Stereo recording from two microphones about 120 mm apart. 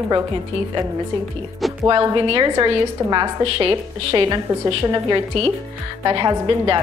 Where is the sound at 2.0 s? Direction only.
40° right (ahead or behind).